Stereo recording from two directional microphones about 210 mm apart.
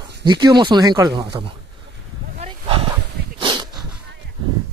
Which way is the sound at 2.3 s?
30° right (ahead or behind).